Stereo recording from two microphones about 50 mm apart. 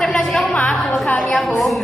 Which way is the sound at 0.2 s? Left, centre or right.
Centre.